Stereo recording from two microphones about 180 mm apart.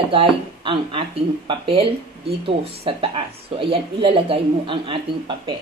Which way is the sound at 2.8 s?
30° right (ahead or behind).